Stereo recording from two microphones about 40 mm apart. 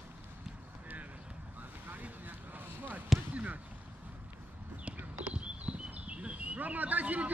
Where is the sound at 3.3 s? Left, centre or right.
Right.